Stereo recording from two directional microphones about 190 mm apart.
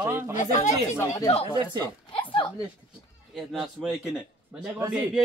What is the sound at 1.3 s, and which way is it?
Speech, 30° left (ahead or behind).